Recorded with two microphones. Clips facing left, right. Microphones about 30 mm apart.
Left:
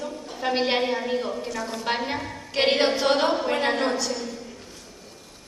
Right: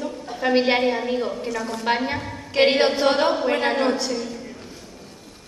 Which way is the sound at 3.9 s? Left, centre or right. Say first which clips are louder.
Right 2 dB; right.